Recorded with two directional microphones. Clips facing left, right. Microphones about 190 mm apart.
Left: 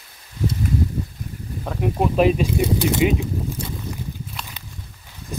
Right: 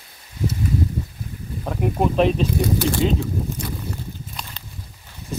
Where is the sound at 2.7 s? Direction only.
15° left (ahead or behind).